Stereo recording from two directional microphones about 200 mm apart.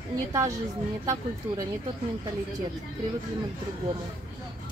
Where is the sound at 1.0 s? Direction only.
15° right (ahead or behind).